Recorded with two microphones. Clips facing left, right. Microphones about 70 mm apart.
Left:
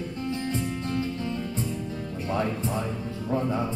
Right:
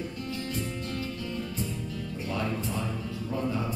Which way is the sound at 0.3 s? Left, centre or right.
Left.